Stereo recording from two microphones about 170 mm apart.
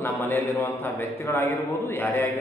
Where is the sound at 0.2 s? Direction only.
15° left (ahead or behind).